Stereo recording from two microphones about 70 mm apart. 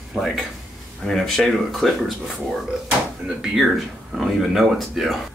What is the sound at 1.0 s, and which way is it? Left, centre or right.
Speech, centre.